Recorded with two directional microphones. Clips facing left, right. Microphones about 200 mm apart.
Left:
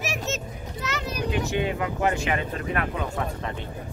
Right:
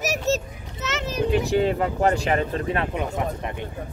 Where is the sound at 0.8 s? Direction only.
20° right (ahead or behind).